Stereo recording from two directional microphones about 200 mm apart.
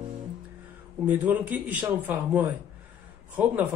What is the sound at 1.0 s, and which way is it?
Speech, 10° right (ahead or behind).